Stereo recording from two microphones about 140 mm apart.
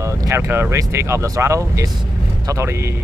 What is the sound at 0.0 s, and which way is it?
Speech, 20° right (ahead or behind).